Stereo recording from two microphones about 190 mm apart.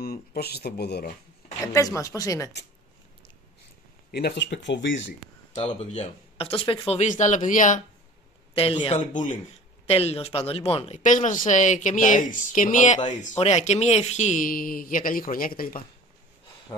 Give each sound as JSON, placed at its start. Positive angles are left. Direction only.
{"t": 0.0, "sound": "speech", "side_deg": 50}
{"t": 1.7, "sound": "speech", "side_deg": 15}
{"t": 4.1, "sound": "speech", "side_deg": 65}
{"t": 5.5, "sound": "speech", "side_deg": 35}
{"t": 8.5, "sound": "speech", "side_deg": 30}
{"t": 11.0, "sound": "speech", "side_deg": 40}